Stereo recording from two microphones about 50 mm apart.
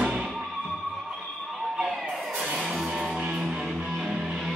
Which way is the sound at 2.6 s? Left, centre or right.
Centre.